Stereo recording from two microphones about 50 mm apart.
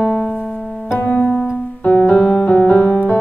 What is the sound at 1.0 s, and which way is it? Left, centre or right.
Music, left.